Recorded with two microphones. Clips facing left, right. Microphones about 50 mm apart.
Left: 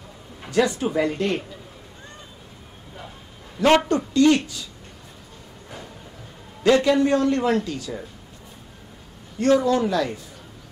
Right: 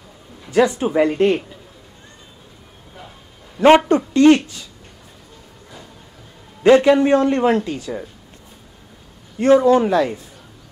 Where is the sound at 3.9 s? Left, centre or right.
Right.